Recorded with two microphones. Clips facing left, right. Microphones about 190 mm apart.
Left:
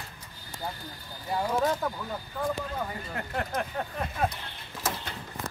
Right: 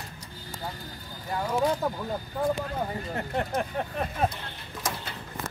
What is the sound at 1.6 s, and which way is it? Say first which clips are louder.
Speech: right 2 dB; 20° right (ahead or behind).